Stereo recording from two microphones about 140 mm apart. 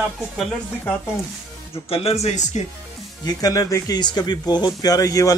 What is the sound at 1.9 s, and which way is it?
Speech, 45° left (ahead or behind).